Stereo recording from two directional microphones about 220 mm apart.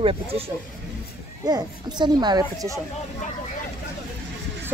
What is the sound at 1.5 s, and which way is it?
Speech, 20° right (ahead or behind).